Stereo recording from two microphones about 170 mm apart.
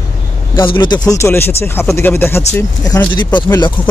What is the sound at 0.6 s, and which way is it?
Speech, 25° left (ahead or behind).